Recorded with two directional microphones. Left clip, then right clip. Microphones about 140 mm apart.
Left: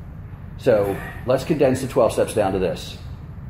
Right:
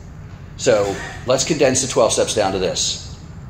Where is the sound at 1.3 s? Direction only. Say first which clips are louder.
Right 2 dB; 30° left (ahead or behind).